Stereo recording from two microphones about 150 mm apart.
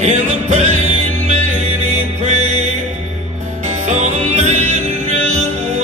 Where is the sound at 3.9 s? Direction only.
50° right (ahead or behind).